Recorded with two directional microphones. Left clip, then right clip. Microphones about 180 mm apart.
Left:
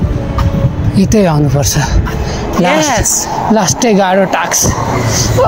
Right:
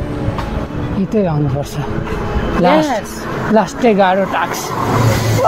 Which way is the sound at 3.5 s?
35° left (ahead or behind).